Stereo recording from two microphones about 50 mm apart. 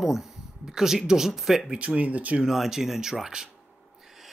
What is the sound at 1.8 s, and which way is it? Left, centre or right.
Speech, right.